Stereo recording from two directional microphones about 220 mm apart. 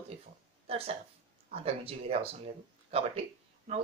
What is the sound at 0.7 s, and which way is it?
Speech, 25° right (ahead or behind).